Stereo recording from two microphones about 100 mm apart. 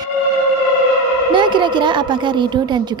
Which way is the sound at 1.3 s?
55° right (ahead or behind).